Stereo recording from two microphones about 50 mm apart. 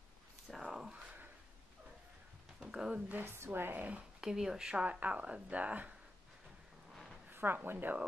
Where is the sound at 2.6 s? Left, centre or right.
Centre.